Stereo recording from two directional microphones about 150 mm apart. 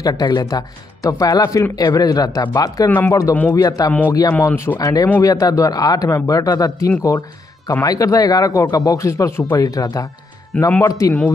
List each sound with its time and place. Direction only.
0.0 s speech: 30° left (ahead or behind)
10.5 s speech: 10° left (ahead or behind)
10.9 s speech: 20° left (ahead or behind)